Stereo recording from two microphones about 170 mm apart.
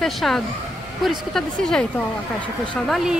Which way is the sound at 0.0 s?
Centre (ahead or behind).